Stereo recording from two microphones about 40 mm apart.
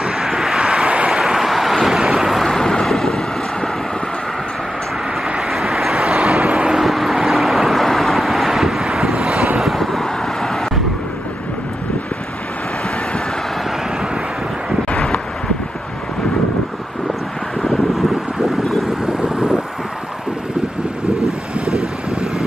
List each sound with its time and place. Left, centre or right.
0.0 s vehicle: centre
0.8 s vehicle: right
1.1 s vehicle: centre
2.4 s boat: centre
5.5 s vehicle: centre
6.0 s vehicle: right
6.8 s vehicle: centre
9.1 s wind noise: right
9.6 s vehicle: centre
17.6 s vehicle: centre
19.0 s vehicle: centre